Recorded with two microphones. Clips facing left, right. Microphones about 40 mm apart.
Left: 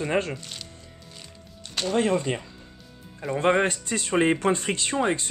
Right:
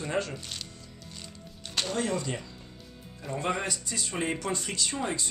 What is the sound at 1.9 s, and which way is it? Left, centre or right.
Speech, left.